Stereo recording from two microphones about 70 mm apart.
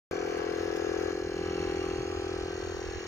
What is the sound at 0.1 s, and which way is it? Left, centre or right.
Vehicle, left.